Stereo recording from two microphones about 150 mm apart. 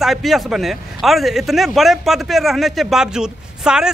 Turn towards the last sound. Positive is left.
turn(degrees=-5)  # may be behind; listen again after turning